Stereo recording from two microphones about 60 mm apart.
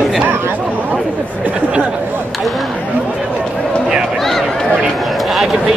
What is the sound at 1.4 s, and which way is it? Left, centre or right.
Speech, right.